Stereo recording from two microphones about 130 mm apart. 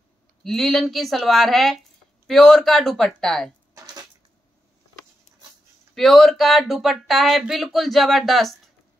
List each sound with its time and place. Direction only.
0.4 s speech: centre (ahead or behind)
3.7 s a sound: 30° right (ahead or behind)
5.9 s speech: centre (ahead or behind)